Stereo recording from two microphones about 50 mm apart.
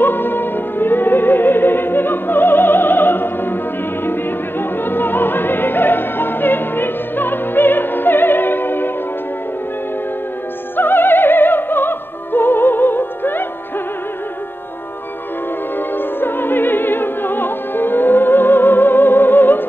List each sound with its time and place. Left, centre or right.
0.0 s music: left
10.8 s opera: left
16.0 s opera: left